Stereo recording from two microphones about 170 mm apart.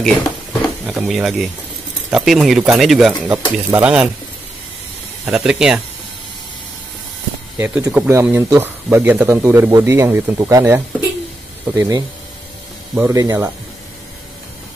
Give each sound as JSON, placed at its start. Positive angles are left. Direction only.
{"t": 0.0, "sound": "a sound", "side_deg": 0}
{"t": 2.0, "sound": "speech", "side_deg": -5}
{"t": 5.2, "sound": "speech", "side_deg": -5}
{"t": 7.5, "sound": "speech", "side_deg": -15}